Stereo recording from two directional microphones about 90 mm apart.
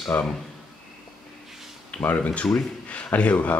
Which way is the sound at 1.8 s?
15° left (ahead or behind).